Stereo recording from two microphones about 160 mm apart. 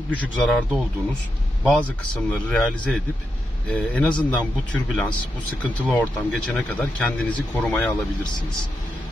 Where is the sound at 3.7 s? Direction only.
10° left (ahead or behind).